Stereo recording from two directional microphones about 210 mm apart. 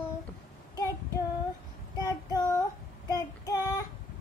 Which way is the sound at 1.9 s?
15° left (ahead or behind).